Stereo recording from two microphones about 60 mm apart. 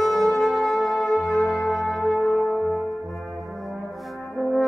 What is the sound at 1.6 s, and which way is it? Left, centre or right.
Music, centre.